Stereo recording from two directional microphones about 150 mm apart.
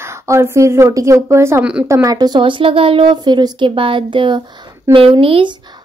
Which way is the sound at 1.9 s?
25° right (ahead or behind).